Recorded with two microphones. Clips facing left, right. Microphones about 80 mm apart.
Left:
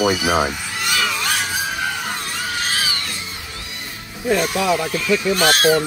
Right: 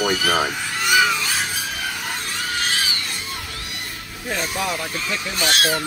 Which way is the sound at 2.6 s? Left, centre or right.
Left.